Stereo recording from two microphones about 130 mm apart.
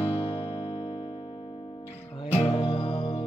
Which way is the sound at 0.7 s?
50° left (ahead or behind).